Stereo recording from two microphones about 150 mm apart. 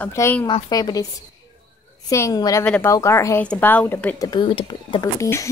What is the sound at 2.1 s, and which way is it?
Speech, 20° left (ahead or behind).